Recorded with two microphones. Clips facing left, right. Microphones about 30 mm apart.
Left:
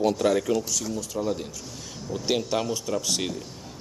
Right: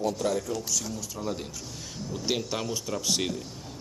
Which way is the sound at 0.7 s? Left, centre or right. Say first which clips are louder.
Left 3 dB; centre.